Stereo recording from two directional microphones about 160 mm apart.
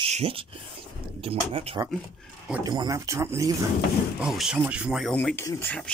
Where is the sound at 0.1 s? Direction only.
35° right (ahead or behind).